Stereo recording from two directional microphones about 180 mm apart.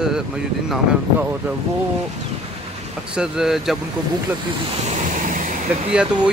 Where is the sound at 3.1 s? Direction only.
5° right (ahead or behind).